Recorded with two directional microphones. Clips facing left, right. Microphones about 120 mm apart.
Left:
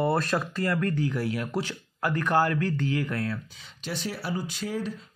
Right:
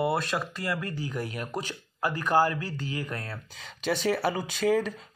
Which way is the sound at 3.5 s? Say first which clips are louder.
Right 6 dB; 90° right.